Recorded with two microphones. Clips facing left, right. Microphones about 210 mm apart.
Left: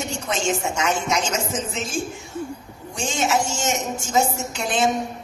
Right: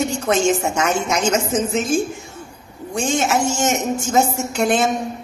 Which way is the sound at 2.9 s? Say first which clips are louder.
Right 4 dB; 55° right (ahead or behind).